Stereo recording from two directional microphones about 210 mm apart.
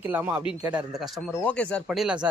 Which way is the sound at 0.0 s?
10° right (ahead or behind).